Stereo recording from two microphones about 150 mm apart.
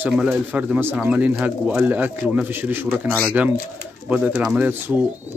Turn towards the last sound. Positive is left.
turn(degrees=-10)  # may be behind; listen again after turning